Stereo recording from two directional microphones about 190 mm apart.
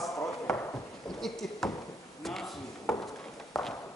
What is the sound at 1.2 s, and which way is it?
Speech, centre (ahead or behind).